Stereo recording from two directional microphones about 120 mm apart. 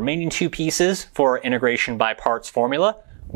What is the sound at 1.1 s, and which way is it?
Speech, 20° right (ahead or behind).